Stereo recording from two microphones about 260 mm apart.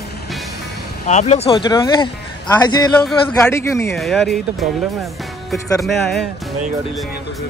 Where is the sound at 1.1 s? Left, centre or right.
Left; by 4.3 s centre.